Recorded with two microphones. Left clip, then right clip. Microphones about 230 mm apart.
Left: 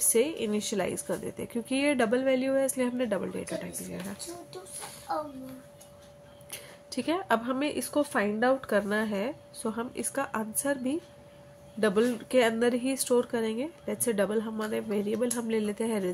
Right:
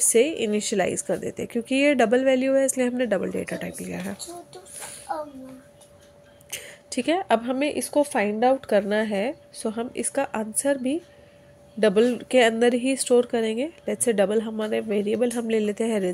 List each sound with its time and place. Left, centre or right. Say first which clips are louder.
0.0 s a woman's voice: right 7 dB; centre
5.1 s a sound: right 2 dB; centre
6.5 s a woman's voice: right 7 dB; centre